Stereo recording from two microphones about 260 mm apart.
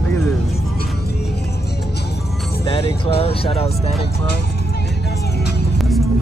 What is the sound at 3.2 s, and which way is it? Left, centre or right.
Speech, left.